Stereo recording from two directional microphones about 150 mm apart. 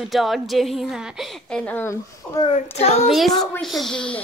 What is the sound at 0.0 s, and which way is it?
A woman's voice, centre (ahead or behind).